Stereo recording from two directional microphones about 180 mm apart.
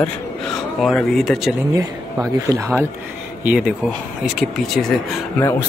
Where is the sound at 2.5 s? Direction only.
20° right (ahead or behind).